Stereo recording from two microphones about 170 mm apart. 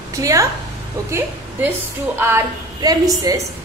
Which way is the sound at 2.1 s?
20° right (ahead or behind).